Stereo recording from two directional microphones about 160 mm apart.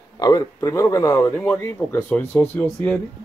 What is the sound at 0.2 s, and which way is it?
A man's voice, 25° left (ahead or behind).